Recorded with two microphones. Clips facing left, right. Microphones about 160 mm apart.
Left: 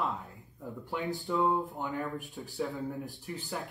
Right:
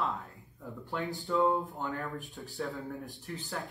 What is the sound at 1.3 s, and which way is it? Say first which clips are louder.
Speech: right 1 dB; centre (ahead or behind).